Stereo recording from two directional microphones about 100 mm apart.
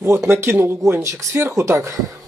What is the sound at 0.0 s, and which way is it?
Speech, 25° right (ahead or behind).